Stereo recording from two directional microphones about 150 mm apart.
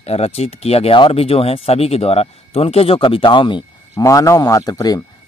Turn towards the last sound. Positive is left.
turn(degrees=25)  # may be behind; listen again after turning